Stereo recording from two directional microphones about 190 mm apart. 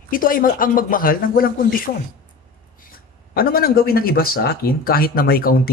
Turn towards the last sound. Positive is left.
turn(degrees=50)  # may be behind; listen again after turning